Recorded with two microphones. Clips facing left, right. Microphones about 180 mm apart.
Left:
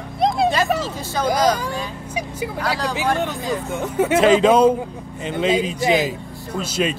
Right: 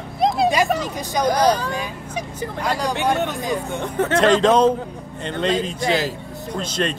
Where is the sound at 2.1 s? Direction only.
10° left (ahead or behind).